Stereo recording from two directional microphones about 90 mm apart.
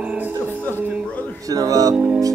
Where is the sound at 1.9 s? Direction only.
15° right (ahead or behind).